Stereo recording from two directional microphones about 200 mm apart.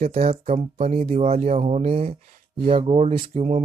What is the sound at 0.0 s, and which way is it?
Speech, 30° right (ahead or behind).